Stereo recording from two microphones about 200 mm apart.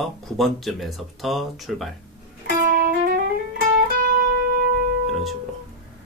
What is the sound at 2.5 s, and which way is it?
Music, 45° right (ahead or behind).